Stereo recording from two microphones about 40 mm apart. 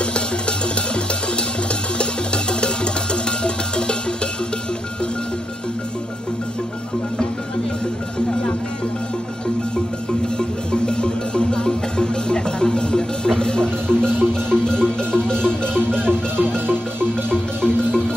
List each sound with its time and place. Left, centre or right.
0.0 s music: left
2.0 s music: left
10.7 s music: left
17.3 s marimba: centre